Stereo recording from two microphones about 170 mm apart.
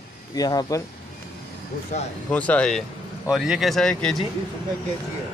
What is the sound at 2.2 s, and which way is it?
A man's voice, 10° left (ahead or behind).